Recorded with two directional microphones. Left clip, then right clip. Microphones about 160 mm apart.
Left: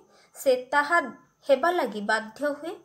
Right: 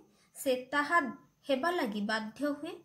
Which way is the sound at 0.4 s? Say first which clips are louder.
Left 9 dB; 15° right (ahead or behind).